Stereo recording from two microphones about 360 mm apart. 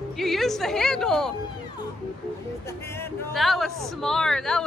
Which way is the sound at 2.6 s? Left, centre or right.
Centre.